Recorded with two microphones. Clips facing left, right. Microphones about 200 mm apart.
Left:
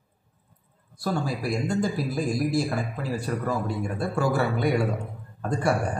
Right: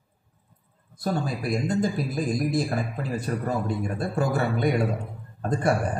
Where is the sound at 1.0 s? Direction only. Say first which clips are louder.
Even; 20° right (ahead or behind).